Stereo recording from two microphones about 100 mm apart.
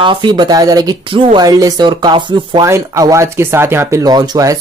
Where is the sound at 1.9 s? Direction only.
50° right (ahead or behind).